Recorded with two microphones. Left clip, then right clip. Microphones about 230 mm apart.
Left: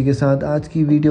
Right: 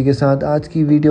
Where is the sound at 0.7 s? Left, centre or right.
Right.